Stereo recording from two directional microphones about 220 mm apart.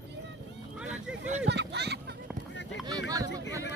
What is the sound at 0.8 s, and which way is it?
Vehicle, 5° right (ahead or behind).